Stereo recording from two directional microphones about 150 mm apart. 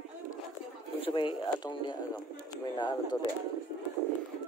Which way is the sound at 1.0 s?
35° left (ahead or behind).